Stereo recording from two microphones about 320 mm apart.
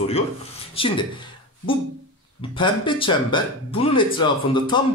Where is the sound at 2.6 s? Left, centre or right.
Centre.